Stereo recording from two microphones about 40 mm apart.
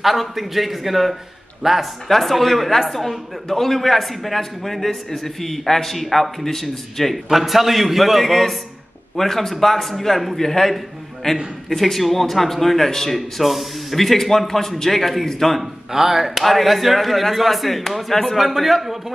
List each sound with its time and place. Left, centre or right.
0.0 s a man's voice: centre
2.0 s a man's voice: centre
7.2 s a man's voice: centre
11.7 s a man's voice: centre
15.9 s a man's voice: centre